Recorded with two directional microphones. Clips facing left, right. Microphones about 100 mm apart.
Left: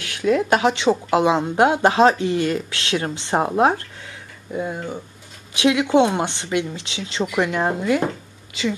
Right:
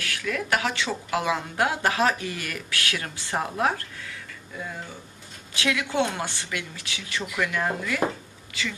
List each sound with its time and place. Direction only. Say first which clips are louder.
0.0 s speech: left 10 dB; 20° left (ahead or behind)